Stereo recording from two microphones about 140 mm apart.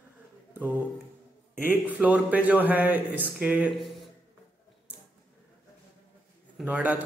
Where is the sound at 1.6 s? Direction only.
10° right (ahead or behind).